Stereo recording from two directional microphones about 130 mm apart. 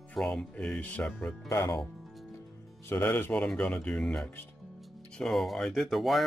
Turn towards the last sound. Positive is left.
turn(degrees=0)  # may be behind; listen again after turning